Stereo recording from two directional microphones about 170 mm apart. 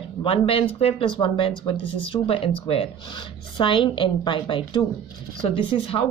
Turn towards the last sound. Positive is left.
turn(degrees=35)  # may be behind; listen again after turning